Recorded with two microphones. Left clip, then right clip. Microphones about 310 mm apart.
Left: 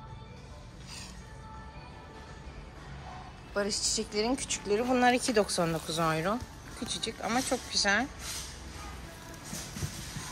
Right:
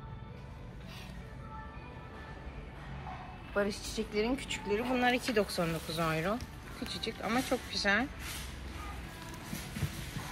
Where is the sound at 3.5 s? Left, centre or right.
Centre.